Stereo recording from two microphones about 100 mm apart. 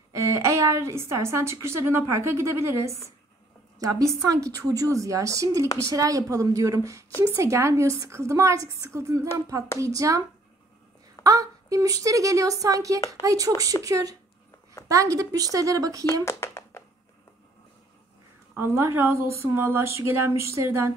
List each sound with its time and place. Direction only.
0.1 s a woman's voice: 30° right (ahead or behind)
11.2 s a woman's voice: 35° right (ahead or behind)
16.3 s a sound: 25° left (ahead or behind)
18.6 s speech: 25° right (ahead or behind)